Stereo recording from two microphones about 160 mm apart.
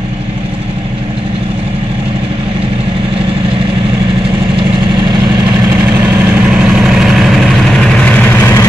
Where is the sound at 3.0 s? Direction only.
35° right (ahead or behind); by 8.6 s 15° left (ahead or behind).